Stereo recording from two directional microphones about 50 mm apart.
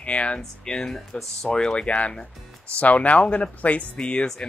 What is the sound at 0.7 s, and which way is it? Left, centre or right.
Speech, centre.